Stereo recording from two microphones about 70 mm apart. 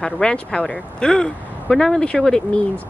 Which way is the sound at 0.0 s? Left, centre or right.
Centre.